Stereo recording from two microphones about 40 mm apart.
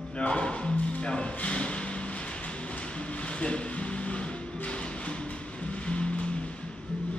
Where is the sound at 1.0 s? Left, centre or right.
Left.